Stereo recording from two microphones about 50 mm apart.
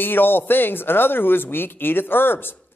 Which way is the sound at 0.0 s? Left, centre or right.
Left.